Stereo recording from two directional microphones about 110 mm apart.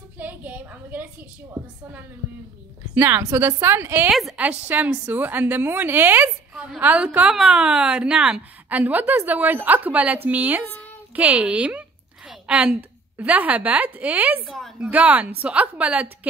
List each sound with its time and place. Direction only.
0.2 s a sound: 15° right (ahead or behind)
2.9 s a woman's voice: 20° right (ahead or behind)
4.1 s a woman's voice: centre (ahead or behind)
4.4 s a woman's voice: 15° right (ahead or behind)
12.3 s a sound: 10° right (ahead or behind)
13.2 s a woman's voice: 15° right (ahead or behind)